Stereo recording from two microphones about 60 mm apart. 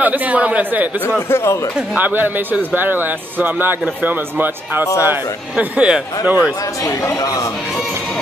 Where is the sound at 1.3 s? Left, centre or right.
Left.